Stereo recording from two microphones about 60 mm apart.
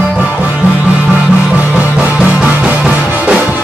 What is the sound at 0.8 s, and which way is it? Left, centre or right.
Music, right.